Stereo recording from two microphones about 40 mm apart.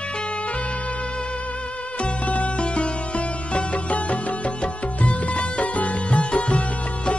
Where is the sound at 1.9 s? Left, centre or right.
Left.